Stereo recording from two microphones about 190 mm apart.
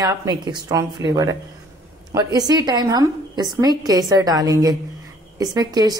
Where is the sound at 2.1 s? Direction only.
20° right (ahead or behind).